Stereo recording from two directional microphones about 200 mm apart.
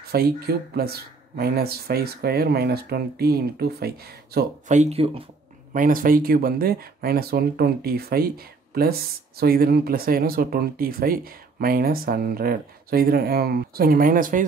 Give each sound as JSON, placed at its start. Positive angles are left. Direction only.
{"t": 0.1, "sound": "speech", "side_deg": -50}
{"t": 4.6, "sound": "speech", "side_deg": -35}
{"t": 5.8, "sound": "speech", "side_deg": -45}